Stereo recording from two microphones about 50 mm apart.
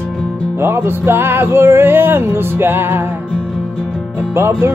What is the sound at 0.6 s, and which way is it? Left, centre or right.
Music, right.